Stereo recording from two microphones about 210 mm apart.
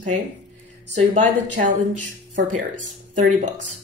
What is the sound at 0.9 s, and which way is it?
Speech, 35° right (ahead or behind).